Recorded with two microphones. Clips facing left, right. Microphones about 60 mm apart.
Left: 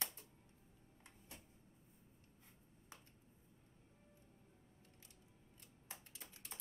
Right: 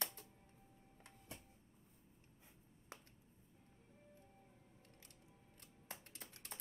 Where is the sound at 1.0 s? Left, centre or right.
Right.